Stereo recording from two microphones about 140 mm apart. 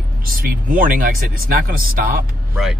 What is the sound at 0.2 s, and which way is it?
Speech, 90° right.